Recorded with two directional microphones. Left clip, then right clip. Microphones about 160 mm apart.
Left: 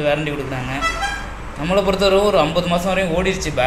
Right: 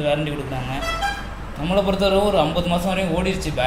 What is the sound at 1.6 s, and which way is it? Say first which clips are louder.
A man's voice: left 3 dB; 5° right (ahead or behind).